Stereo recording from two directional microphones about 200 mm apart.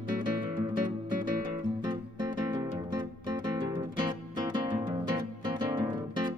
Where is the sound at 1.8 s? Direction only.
20° right (ahead or behind).